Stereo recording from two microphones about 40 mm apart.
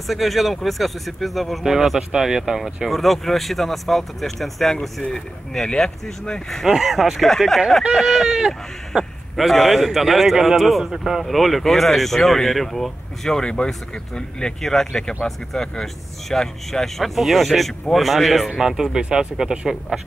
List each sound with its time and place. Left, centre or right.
0.0 s speech: centre
2.9 s speech: centre
6.2 s speech: centre
6.6 s speech: centre
7.9 s speech: centre
9.4 s speech: centre
11.2 s speech: centre
13.4 s speech: left
14.6 s speech: centre
18.6 s speech: centre